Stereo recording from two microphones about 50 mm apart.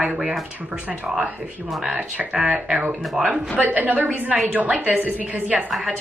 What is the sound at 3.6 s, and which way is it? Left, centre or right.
A woman's voice, right.